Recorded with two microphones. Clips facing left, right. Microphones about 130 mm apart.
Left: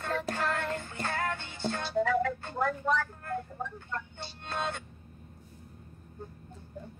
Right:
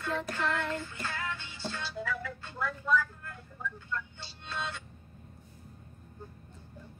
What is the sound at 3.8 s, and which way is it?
Speech, 55° left (ahead or behind).